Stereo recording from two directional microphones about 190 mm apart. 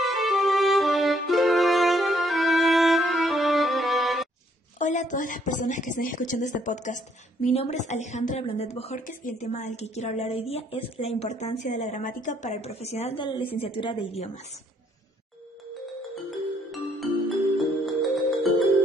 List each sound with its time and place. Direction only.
0.0 s music: centre (ahead or behind)
4.7 s a woman's voice: 40° left (ahead or behind)
8.9 s a woman's voice: 45° left (ahead or behind); by 14.3 s 30° left (ahead or behind)
16.3 s music: centre (ahead or behind)